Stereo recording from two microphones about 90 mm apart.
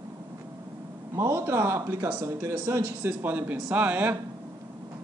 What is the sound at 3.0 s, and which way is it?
Speech, 20° right (ahead or behind).